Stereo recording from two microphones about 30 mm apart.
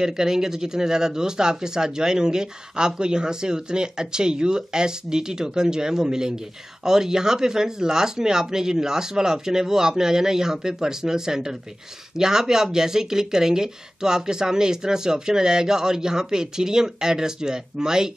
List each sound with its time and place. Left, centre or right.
0.0 s speech: centre